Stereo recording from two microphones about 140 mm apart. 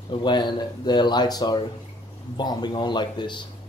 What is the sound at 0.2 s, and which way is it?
A man's voice, 30° left (ahead or behind).